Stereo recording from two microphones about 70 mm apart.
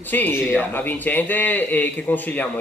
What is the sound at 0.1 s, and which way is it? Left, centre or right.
A man's voice, left.